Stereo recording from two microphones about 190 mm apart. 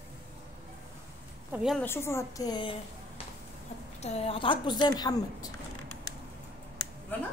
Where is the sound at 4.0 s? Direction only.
35° left (ahead or behind).